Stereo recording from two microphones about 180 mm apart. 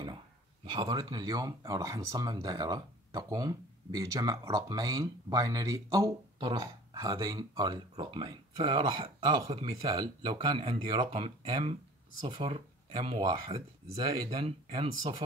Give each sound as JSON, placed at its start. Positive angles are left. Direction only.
{"t": 0.7, "sound": "speech", "side_deg": -25}
{"t": 9.8, "sound": "speech", "side_deg": -30}